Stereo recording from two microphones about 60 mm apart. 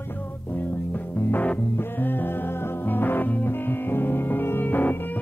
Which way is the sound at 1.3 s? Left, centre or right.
Left.